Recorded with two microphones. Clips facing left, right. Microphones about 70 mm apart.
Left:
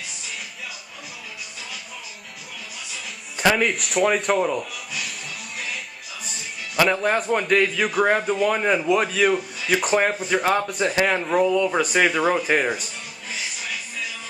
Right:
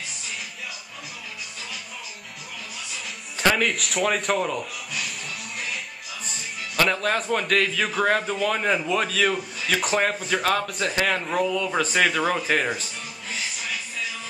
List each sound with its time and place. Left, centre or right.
3.3 s speech: centre
6.8 s a man's voice: centre